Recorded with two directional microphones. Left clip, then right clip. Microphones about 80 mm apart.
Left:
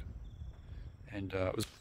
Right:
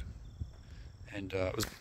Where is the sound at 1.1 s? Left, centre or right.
Left.